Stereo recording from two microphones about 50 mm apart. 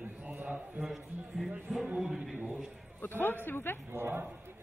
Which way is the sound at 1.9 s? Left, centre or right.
Centre.